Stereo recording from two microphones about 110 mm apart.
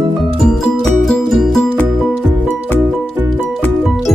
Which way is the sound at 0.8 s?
5° left (ahead or behind).